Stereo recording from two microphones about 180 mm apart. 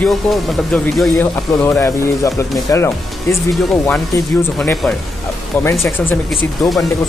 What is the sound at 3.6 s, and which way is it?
Speech, centre (ahead or behind).